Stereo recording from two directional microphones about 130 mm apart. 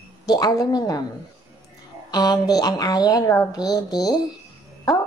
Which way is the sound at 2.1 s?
30° left (ahead or behind).